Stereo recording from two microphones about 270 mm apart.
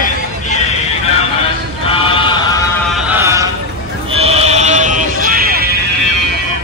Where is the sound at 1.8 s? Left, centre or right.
Centre.